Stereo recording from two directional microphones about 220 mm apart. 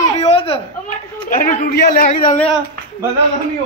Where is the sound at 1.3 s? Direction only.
40° left (ahead or behind).